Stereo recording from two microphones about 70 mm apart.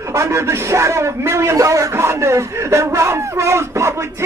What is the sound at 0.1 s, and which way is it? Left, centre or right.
A man's voice, right.